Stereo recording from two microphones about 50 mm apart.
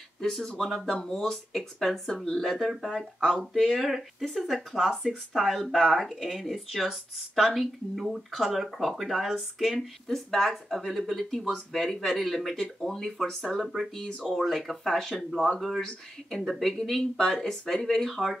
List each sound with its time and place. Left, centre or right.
0.2 s speech: centre
2.7 s speech: centre
3.0 s speech: centre
13.7 s speech: centre
14.0 s speech: centre